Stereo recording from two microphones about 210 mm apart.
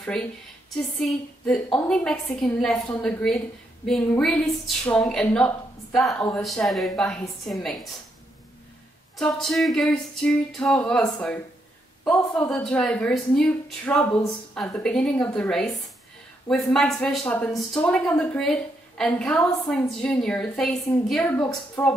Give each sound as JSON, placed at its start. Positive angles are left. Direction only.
{"t": 0.7, "sound": "a woman's voice", "side_deg": 0}
{"t": 9.1, "sound": "a woman's voice", "side_deg": 0}